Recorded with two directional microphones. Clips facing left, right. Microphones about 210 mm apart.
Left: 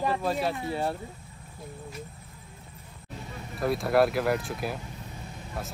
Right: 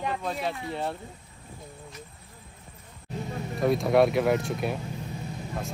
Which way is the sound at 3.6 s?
Centre (ahead or behind).